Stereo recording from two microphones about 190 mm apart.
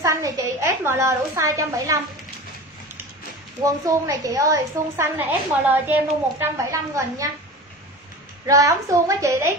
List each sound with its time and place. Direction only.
0.0 s a woman's voice: 15° right (ahead or behind)
3.6 s a woman's voice: 15° right (ahead or behind)
8.5 s a woman's voice: 15° right (ahead or behind)